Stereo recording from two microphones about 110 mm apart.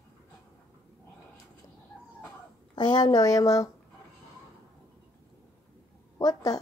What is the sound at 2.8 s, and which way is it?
Speech, 40° left (ahead or behind).